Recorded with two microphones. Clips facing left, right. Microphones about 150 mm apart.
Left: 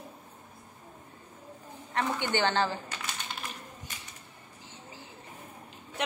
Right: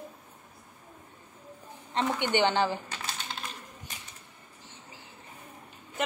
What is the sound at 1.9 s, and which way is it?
Speech, 20° right (ahead or behind).